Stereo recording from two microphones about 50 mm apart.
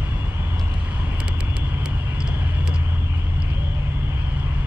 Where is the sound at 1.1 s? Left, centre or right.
Right.